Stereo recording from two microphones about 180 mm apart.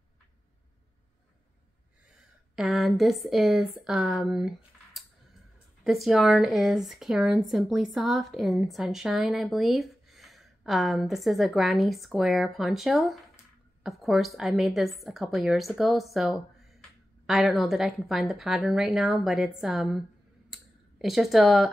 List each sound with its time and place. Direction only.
2.5 s speech: centre (ahead or behind)
20.4 s clicking: centre (ahead or behind)